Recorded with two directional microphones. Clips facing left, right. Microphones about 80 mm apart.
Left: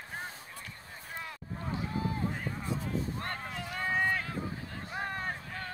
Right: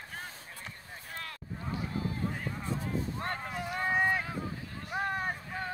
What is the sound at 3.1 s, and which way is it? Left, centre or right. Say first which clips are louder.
Boat: right 2 dB; centre.